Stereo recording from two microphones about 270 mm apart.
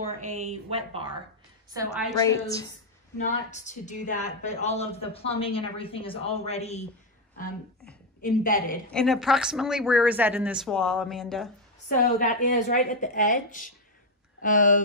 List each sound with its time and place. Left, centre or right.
0.2 s speech: right
1.8 s a woman's voice: centre
2.1 s a woman's voice: centre
3.2 s a woman's voice: left
8.2 s a woman's voice: left
8.9 s a woman's voice: centre
11.9 s a woman's voice: left